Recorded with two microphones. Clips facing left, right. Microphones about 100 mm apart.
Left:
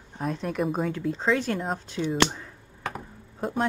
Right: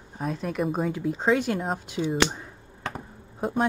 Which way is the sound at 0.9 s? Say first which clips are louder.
Right 2 dB; 10° right (ahead or behind).